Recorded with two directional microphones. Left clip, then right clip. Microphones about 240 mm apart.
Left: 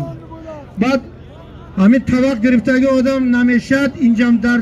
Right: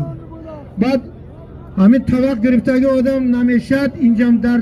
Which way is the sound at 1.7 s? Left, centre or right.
Centre.